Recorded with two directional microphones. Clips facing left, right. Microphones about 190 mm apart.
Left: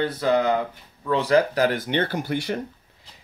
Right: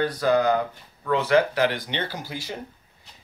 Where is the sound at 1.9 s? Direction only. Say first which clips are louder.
Left 7 dB; 55° left (ahead or behind).